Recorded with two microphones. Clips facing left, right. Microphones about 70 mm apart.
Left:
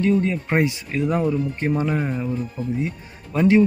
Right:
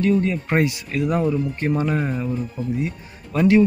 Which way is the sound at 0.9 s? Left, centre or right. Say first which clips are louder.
Right 1 dB; centre.